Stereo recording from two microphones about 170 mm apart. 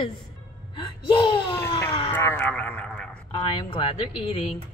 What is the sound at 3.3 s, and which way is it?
Speech, 30° left (ahead or behind).